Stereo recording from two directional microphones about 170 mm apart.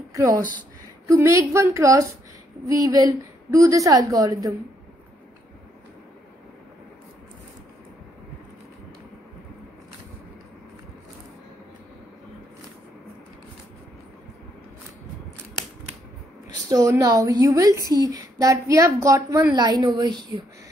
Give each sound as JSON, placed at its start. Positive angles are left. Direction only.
{"t": 0.1, "sound": "a woman's voice", "side_deg": -20}
{"t": 16.6, "sound": "speech", "side_deg": -20}